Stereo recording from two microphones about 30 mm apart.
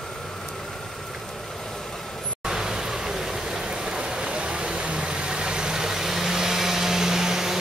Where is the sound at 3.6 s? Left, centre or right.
Right.